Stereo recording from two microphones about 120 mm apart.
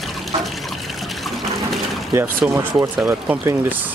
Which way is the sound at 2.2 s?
20° right (ahead or behind).